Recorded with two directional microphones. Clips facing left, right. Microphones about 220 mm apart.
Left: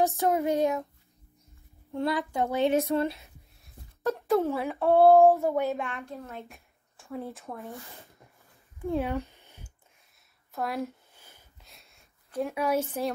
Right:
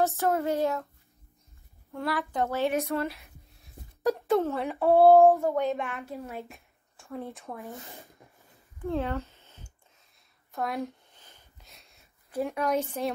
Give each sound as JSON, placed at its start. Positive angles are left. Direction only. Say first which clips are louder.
{"t": 0.0, "sound": "child singing", "louder": "left 1 dB", "side_deg": 15}
{"t": 1.9, "sound": "child singing", "louder": "left 3 dB", "side_deg": 20}
{"t": 3.0, "sound": "speech", "louder": "left 3 dB", "side_deg": 25}
{"t": 4.4, "sound": "child singing", "louder": "even", "side_deg": 10}
{"t": 4.6, "sound": "a woman's voice", "louder": "right 1 dB", "side_deg": 0}
{"t": 6.5, "sound": "speech", "louder": "right 2 dB", "side_deg": 0}
{"t": 8.8, "sound": "speech", "louder": "left 1 dB", "side_deg": 15}
{"t": 10.5, "sound": "a sound", "louder": "even", "side_deg": 0}
{"t": 12.4, "sound": "a woman's voice", "louder": "even", "side_deg": 0}
{"t": 13.0, "sound": "child singing", "louder": "even", "side_deg": 10}